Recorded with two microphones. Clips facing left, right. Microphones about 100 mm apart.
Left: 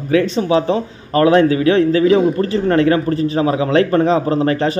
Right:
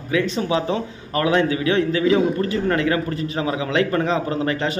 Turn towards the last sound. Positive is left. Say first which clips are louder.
# left 6 dB
turn(degrees=35)  # may be behind; listen again after turning